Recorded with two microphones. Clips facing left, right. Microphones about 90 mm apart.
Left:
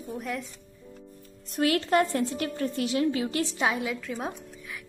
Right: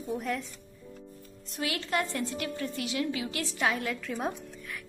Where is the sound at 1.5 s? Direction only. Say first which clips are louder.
Left 8 dB; 45° left (ahead or behind).